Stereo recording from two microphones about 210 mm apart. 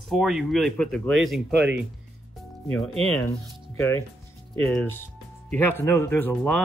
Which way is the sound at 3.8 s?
10° left (ahead or behind).